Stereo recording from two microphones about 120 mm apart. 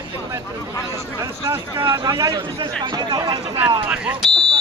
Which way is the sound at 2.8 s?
35° right (ahead or behind).